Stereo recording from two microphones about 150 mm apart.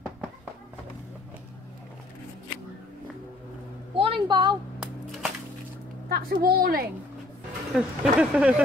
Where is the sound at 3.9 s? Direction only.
40° right (ahead or behind).